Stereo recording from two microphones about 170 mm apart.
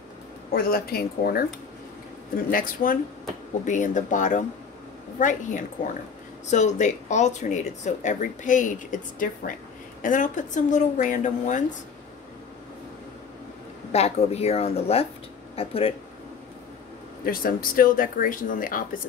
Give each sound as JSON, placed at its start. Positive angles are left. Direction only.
{"t": 0.5, "sound": "speech", "side_deg": 60}
{"t": 13.9, "sound": "speech", "side_deg": 40}
{"t": 17.2, "sound": "speech", "side_deg": 60}